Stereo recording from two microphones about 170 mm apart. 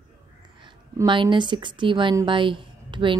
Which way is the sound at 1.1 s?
30° right (ahead or behind).